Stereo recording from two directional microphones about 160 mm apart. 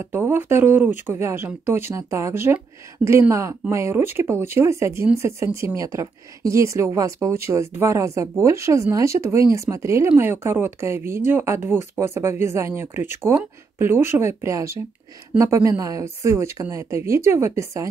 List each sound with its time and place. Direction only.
0.0 s speech: 15° right (ahead or behind)